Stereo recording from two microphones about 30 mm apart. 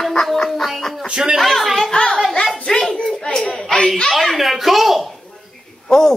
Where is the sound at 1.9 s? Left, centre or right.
Left; by 3.8 s centre.